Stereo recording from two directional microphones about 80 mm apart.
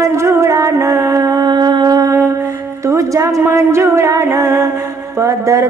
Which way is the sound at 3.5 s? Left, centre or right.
Right.